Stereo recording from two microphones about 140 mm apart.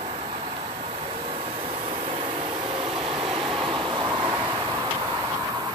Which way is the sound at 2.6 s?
35° right (ahead or behind).